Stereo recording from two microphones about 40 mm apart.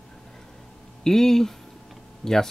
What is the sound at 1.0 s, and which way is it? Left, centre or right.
Speech, centre.